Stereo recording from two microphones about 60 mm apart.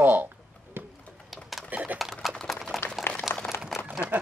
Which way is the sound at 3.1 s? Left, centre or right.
Left.